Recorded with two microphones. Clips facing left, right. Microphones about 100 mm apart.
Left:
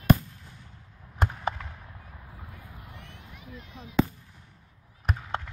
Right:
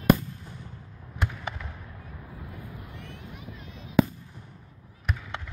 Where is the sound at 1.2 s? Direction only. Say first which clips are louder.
Left 3 dB; 40° left (ahead or behind).